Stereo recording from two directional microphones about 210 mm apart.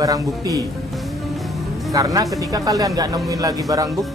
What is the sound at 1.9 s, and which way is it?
Speech, 15° right (ahead or behind).